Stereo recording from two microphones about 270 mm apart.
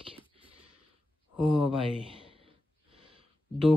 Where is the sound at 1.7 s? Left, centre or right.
Centre.